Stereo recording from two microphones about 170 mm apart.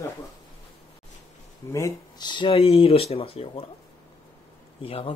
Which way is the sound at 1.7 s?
20° left (ahead or behind).